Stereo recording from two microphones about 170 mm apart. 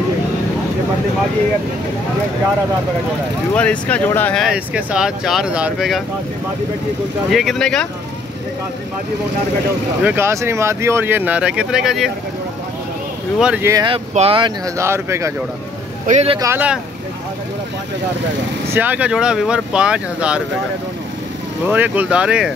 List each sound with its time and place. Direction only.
3.5 s speech: 10° left (ahead or behind)
7.2 s speech: centre (ahead or behind)
10.0 s speech: 15° right (ahead or behind)
13.4 s speech: 5° right (ahead or behind)
13.7 s speech: 20° right (ahead or behind)
13.9 s speech: 35° right (ahead or behind)
14.8 s speech: 15° right (ahead or behind)
16.1 s speech: 40° right (ahead or behind)
16.3 s speech: 15° right (ahead or behind)
18.7 s speech: 10° right (ahead or behind)
21.6 s speech: 10° right (ahead or behind)